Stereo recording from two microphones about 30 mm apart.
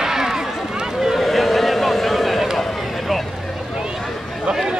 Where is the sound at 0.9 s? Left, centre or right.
Centre.